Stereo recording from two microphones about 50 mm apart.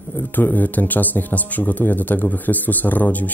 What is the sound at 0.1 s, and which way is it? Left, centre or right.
Speech, left.